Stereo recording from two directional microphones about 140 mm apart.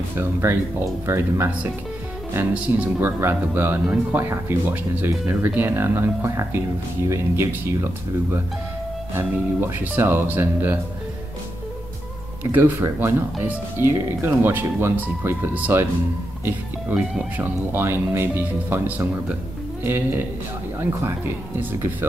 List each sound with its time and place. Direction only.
0.2 s speech: 20° right (ahead or behind)
12.4 s speech: 25° right (ahead or behind)
17.4 s speech: 15° right (ahead or behind)